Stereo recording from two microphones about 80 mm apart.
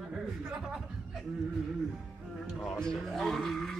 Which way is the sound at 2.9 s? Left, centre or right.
Centre.